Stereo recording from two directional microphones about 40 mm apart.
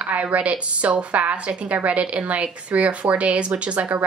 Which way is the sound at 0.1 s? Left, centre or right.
Right.